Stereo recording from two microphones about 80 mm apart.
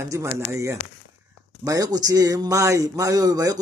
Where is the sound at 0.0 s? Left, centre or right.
Right.